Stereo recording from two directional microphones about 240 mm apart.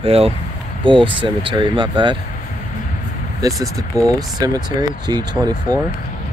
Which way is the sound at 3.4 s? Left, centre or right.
Centre.